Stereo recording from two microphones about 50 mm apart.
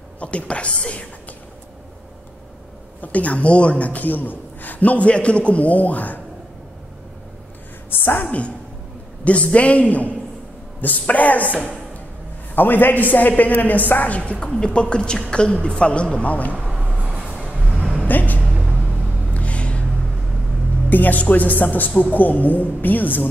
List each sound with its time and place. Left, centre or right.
0.2 s a woman's voice: left
3.0 s a man's voice: left
7.9 s a woman's voice: left
12.5 s a man's voice: left
17.1 s music: right
18.0 s music: left
18.4 s music: right
19.3 s a sound: left
20.9 s a man's voice: left